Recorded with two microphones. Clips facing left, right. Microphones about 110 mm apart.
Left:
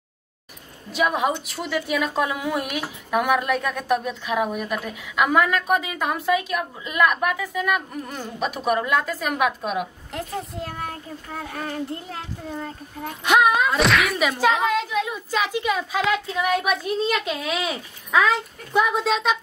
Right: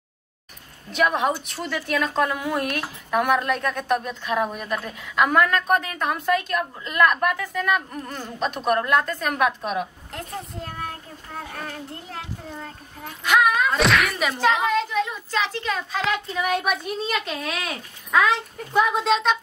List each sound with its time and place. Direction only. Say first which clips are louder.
0.9 s a woman's voice: even; 5° left (ahead or behind)
13.2 s speech: left 2 dB; 25° left (ahead or behind)
13.7 s a woman's voice: even; centre (ahead or behind)